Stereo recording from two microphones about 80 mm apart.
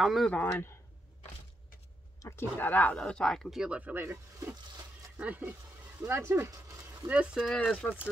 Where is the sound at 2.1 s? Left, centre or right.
Left.